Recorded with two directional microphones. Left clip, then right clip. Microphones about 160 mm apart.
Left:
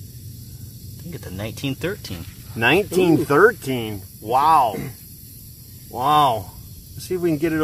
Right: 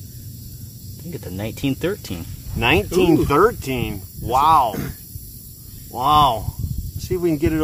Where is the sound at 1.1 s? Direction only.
40° right (ahead or behind).